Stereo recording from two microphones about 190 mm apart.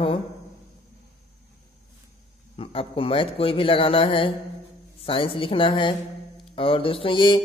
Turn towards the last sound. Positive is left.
turn(degrees=25)  # may be behind; listen again after turning